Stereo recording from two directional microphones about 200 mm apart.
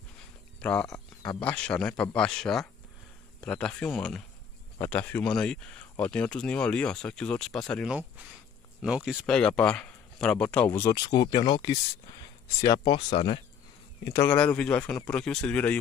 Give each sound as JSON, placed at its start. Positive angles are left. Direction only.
{"t": 0.6, "sound": "speech", "side_deg": 5}
{"t": 0.9, "sound": "a sound", "side_deg": 20}
{"t": 1.4, "sound": "speech", "side_deg": 5}
{"t": 14.1, "sound": "speech", "side_deg": 10}